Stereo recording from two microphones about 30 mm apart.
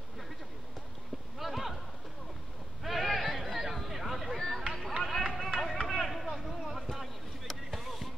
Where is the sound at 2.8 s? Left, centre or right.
Centre.